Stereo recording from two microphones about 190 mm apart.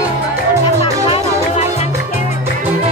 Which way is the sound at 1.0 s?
30° left (ahead or behind).